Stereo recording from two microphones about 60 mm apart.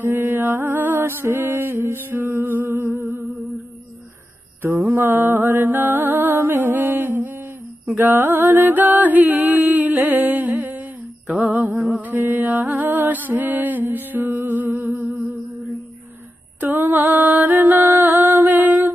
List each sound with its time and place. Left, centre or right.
0.0 s music: right
1.8 s humming: right
4.6 s music: right
16.5 s a sound: right